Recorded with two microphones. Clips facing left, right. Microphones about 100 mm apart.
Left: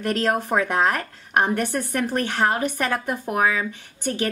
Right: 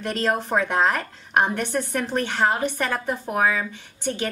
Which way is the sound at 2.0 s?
10° left (ahead or behind).